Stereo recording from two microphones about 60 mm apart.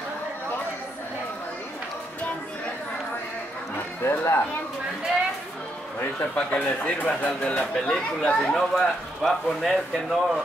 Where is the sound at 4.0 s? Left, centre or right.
Left.